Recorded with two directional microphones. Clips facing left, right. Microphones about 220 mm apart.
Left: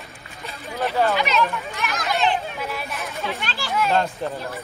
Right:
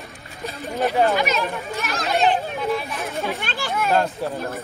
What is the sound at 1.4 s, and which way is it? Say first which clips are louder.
Speech: left 2 dB; 30° right (ahead or behind).